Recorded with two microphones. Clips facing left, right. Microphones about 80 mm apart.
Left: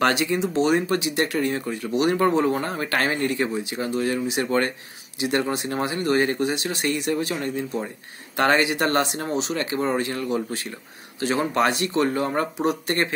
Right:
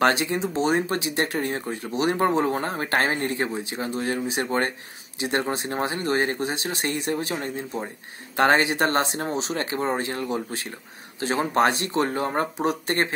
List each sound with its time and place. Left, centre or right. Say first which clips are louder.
0.0 s speech: even; right